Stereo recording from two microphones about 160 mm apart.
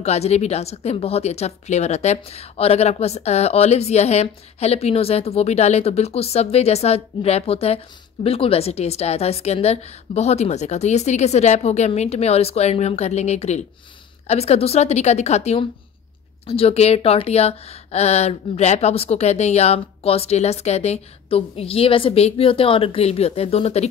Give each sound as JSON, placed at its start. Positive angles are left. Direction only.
{"t": 0.0, "sound": "a woman's voice", "side_deg": 40}